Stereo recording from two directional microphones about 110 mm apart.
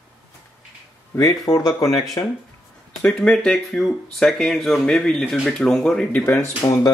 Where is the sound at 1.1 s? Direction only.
30° left (ahead or behind).